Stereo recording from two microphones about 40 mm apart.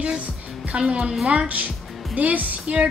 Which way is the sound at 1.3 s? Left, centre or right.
Right.